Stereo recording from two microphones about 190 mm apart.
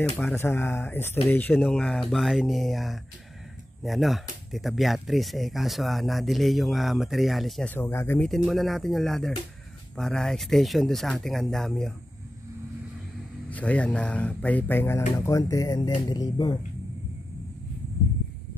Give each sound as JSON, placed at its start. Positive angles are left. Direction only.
{"t": 0.2, "sound": "speech", "side_deg": 10}
{"t": 8.5, "sound": "speech", "side_deg": 0}
{"t": 13.5, "sound": "speech", "side_deg": 5}